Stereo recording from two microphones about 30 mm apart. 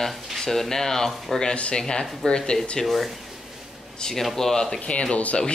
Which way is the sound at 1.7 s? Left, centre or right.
Left.